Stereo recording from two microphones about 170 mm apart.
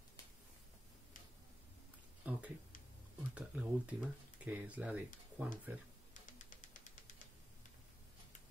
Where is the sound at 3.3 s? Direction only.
10° right (ahead or behind).